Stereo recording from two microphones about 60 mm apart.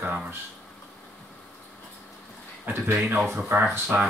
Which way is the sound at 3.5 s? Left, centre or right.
Right.